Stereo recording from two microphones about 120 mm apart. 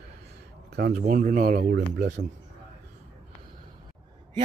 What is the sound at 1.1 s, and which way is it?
Speech, 90° right.